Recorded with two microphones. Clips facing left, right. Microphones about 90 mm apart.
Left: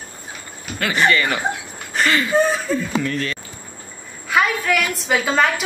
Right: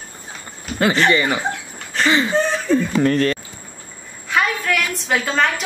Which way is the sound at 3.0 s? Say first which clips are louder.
Right 7 dB; 45° right (ahead or behind).